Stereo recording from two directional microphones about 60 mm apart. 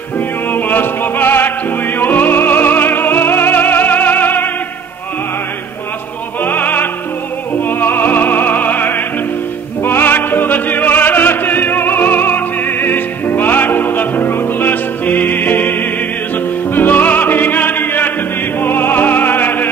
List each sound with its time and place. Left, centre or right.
0.5 s opera: left
2.0 s music: left
6.4 s music: left
16.7 s music: left